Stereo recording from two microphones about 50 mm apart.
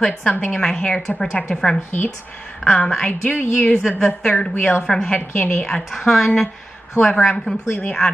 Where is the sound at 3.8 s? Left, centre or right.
Centre.